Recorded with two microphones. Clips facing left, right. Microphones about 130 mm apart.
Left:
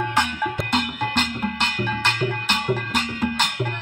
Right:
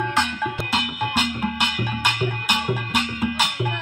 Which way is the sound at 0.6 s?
5° right (ahead or behind).